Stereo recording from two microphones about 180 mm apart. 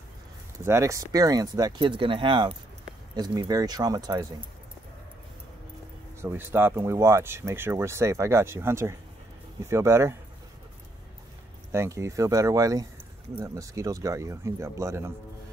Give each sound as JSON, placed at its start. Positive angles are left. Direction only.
{"t": 0.7, "sound": "speech", "side_deg": -15}
{"t": 6.2, "sound": "speech", "side_deg": -10}
{"t": 11.7, "sound": "speech", "side_deg": -15}